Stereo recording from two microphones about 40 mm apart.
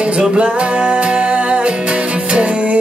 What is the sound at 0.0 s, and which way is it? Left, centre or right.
Music, right.